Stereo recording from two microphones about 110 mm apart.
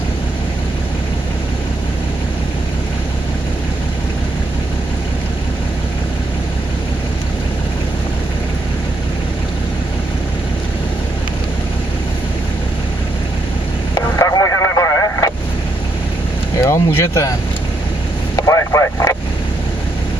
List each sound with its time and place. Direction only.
14.1 s vehicle: 30° left (ahead or behind)
16.6 s speech: 25° left (ahead or behind)
18.3 s vehicle: 30° left (ahead or behind)